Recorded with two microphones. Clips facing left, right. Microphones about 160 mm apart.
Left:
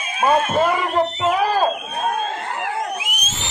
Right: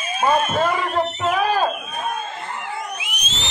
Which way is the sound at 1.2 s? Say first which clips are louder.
Left 1 dB; 20° left (ahead or behind).